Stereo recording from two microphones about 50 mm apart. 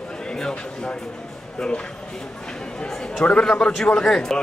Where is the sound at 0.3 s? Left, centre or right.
Centre.